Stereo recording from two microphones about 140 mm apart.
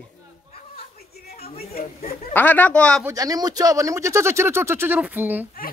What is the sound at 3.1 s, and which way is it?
Speech, 25° right (ahead or behind).